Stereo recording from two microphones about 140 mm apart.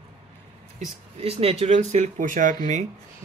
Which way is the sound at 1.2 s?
45° right (ahead or behind).